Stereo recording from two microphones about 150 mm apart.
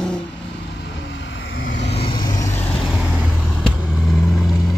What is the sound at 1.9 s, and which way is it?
Vehicle, 35° left (ahead or behind).